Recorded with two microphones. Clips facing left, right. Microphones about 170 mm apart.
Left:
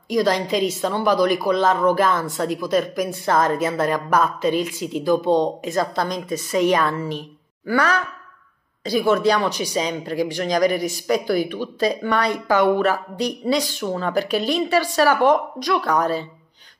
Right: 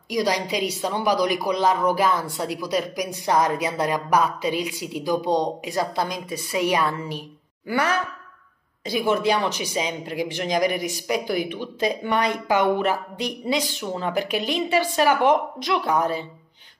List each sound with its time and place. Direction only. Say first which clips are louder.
0.1 s speech: left 4 dB; 15° right (ahead or behind)
6.0 s a woman's voice: left 5 dB; 45° left (ahead or behind)
6.7 s a woman's voice: left 3 dB; 15° right (ahead or behind)